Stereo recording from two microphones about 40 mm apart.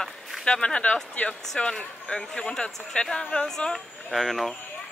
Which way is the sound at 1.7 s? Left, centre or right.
Centre.